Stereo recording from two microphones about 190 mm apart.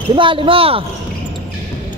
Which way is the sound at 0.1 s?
25° right (ahead or behind).